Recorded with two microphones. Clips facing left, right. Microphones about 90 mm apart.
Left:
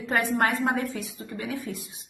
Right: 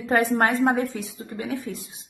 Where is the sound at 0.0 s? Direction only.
30° right (ahead or behind).